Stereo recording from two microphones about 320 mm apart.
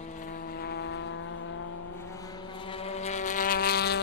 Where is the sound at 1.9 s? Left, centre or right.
Centre; by 4.0 s left.